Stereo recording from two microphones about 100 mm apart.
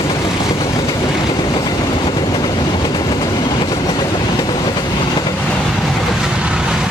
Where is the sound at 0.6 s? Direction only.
30° left (ahead or behind).